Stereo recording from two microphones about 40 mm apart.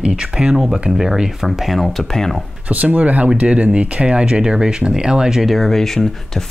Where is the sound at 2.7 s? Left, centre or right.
Right; by 5.4 s centre.